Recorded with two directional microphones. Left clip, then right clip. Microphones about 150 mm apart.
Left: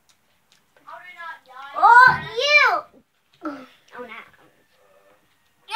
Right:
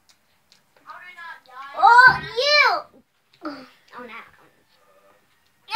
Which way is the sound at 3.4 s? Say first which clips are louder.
Left 2 dB; 5° left (ahead or behind).